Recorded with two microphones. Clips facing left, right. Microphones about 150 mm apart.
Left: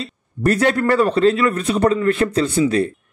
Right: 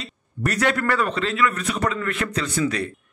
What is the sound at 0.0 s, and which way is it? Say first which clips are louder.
A man's voice: left 8 dB; 30° left (ahead or behind).